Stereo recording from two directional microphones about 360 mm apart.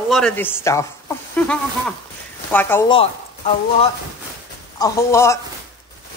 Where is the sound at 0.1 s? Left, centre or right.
Centre.